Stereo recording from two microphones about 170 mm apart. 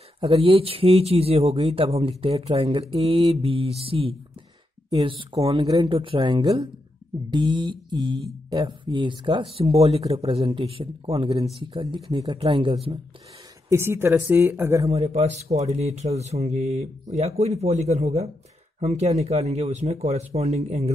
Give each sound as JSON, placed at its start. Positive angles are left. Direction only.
{"t": 0.2, "sound": "speech", "side_deg": -35}
{"t": 13.7, "sound": "speech", "side_deg": -15}
{"t": 14.9, "sound": "speech", "side_deg": -40}